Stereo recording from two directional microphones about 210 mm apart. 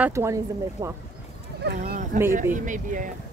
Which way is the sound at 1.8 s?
35° right (ahead or behind).